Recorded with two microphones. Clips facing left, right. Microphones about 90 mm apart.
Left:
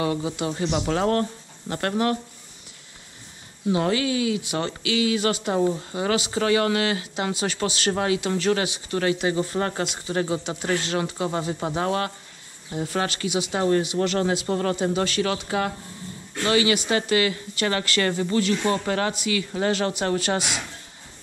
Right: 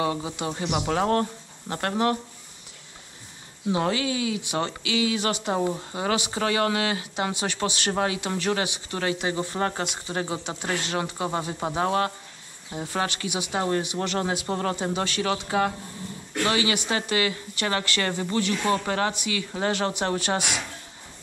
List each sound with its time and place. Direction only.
0.0 s speech: 25° right (ahead or behind)
3.7 s speech: 25° right (ahead or behind)